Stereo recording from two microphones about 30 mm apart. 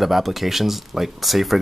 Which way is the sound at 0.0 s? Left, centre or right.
Centre.